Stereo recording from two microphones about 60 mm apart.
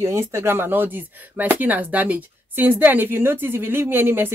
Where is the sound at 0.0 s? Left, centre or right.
Right.